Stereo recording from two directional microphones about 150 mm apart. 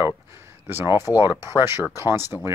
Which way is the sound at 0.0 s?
15° right (ahead or behind).